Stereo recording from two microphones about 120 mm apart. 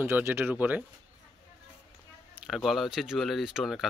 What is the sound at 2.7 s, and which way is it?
Speech, centre (ahead or behind).